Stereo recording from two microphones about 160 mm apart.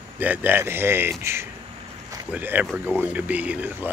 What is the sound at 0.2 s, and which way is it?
Speech, 10° right (ahead or behind).